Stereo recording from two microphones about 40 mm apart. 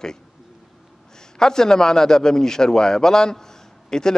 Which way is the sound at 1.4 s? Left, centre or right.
Centre.